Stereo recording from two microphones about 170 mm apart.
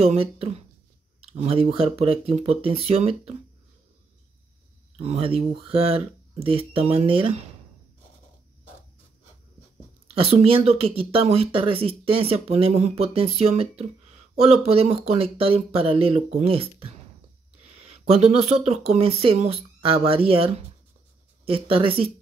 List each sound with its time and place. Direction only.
0.0 s speech: 35° right (ahead or behind)
4.9 s speech: 35° right (ahead or behind)
10.0 s speech: 35° right (ahead or behind)